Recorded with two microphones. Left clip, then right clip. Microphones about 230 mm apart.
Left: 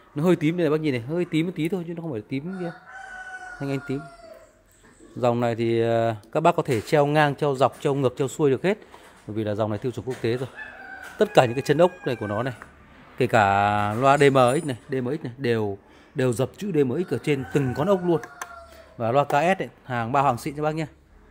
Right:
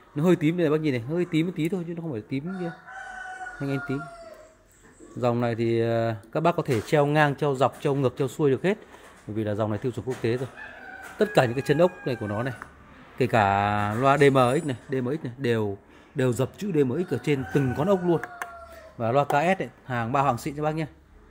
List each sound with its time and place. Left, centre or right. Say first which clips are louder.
0.1 s speech: left 1 dB; centre
5.2 s speech: left 3 dB; centre
11.1 s speech: left 3 dB; centre